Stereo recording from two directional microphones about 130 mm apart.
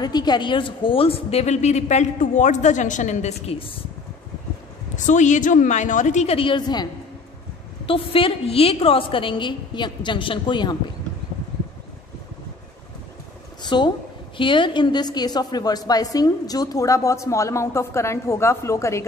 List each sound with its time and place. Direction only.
0.0 s a woman's voice: 30° left (ahead or behind); by 3.7 s 50° left (ahead or behind)
4.9 s a woman's voice: 70° left (ahead or behind)
6.3 s a woman's voice: 40° left (ahead or behind)
13.6 s a woman's voice: 35° left (ahead or behind)